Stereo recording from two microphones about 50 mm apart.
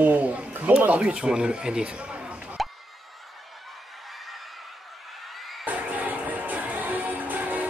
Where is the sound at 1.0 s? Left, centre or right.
Centre.